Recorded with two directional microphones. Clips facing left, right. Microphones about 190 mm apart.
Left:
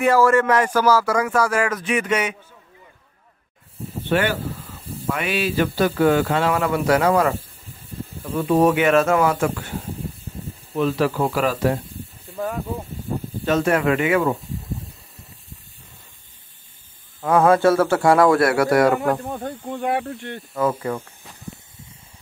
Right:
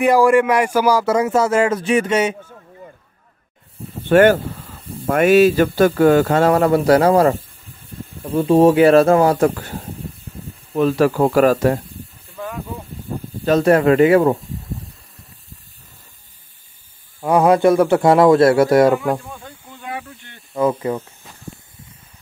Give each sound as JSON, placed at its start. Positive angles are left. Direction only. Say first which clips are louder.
{"t": 0.0, "sound": "speech", "louder": "right 3 dB", "side_deg": -15}
{"t": 4.1, "sound": "speech", "louder": "right 9 dB", "side_deg": -50}
{"t": 10.7, "sound": "speech", "louder": "right 5 dB", "side_deg": -45}
{"t": 13.5, "sound": "speech", "louder": "right 6 dB", "side_deg": -35}
{"t": 17.2, "sound": "speech", "louder": "right 2 dB", "side_deg": -15}
{"t": 19.3, "sound": "speech", "louder": "left 10 dB", "side_deg": 60}
{"t": 20.5, "sound": "speech", "louder": "right 4 dB", "side_deg": -20}